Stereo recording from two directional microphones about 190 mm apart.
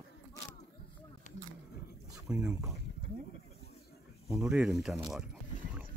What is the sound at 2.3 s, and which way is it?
Speech, 5° right (ahead or behind).